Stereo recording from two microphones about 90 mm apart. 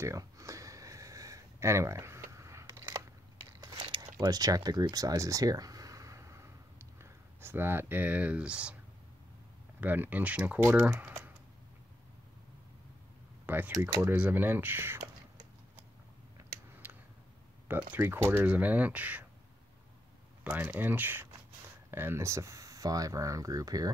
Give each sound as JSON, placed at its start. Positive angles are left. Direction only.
{"t": 0.0, "sound": "a sound", "side_deg": -35}
{"t": 3.7, "sound": "a sound", "side_deg": -65}
{"t": 4.2, "sound": "speech", "side_deg": -45}
{"t": 9.8, "sound": "speech", "side_deg": -20}
{"t": 13.5, "sound": "speech", "side_deg": -20}
{"t": 16.8, "sound": "tick", "side_deg": -20}
{"t": 17.6, "sound": "speech", "side_deg": -20}
{"t": 20.4, "sound": "speech", "side_deg": -25}